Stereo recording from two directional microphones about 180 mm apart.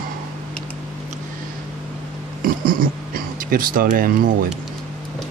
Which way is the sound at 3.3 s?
50° right (ahead or behind).